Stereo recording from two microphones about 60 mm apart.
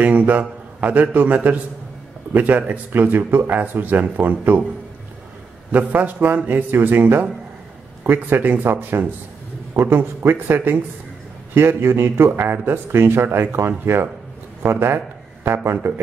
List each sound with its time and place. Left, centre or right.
0.0 s a man's voice: right
5.7 s a man's voice: right